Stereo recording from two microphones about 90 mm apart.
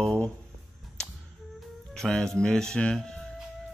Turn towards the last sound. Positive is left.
turn(degrees=5)  # may be behind; listen again after turning